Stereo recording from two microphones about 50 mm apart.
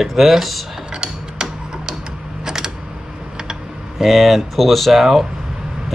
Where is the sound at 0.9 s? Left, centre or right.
Centre.